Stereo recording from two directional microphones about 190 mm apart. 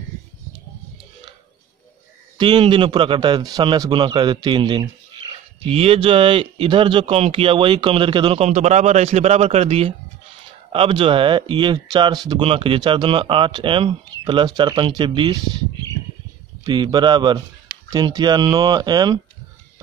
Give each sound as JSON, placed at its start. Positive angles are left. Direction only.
{"t": 2.3, "sound": "speech", "side_deg": -25}
{"t": 16.6, "sound": "speech", "side_deg": -25}